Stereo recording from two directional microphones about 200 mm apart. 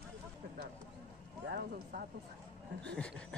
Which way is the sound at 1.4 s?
55° right (ahead or behind).